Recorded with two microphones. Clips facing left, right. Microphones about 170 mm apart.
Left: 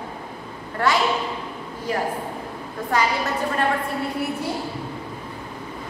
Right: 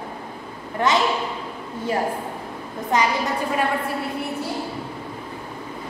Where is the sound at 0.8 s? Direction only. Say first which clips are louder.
Right 1 dB; 20° right (ahead or behind).